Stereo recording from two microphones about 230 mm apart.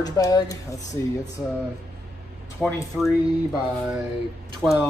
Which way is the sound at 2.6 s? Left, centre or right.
Centre.